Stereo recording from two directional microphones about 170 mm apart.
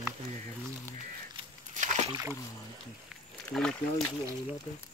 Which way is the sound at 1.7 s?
45° right (ahead or behind).